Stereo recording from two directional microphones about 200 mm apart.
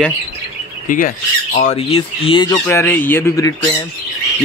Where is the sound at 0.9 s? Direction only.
45° left (ahead or behind).